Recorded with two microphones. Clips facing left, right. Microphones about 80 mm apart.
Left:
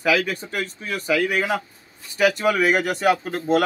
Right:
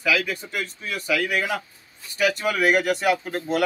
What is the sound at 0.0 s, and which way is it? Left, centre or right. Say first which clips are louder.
Speech: left 3 dB; left.